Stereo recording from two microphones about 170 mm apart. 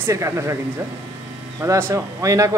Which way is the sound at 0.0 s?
15° right (ahead or behind).